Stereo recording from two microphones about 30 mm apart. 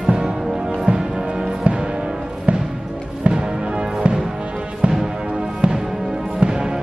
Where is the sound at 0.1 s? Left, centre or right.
Right.